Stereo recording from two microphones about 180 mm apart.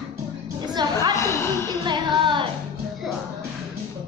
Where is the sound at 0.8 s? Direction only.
25° right (ahead or behind).